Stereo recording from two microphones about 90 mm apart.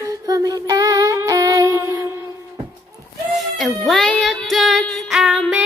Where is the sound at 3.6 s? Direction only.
Centre (ahead or behind).